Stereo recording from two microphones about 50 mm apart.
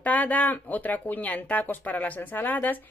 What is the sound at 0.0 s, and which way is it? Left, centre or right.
Speech, left.